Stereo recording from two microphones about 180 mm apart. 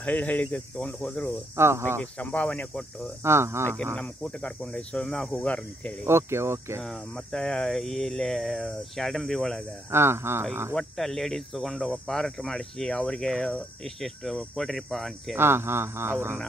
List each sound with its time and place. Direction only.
0.0 s speech: 10° left (ahead or behind)
1.6 s speech: 15° right (ahead or behind)
2.1 s speech: 5° left (ahead or behind)
3.3 s speech: 15° right (ahead or behind)
3.9 s speech: 5° left (ahead or behind)
6.0 s speech: 15° right (ahead or behind)
6.8 s speech: centre (ahead or behind)
9.8 s speech: 15° right (ahead or behind)
10.7 s speech: 5° left (ahead or behind)
15.3 s speech: 15° right (ahead or behind)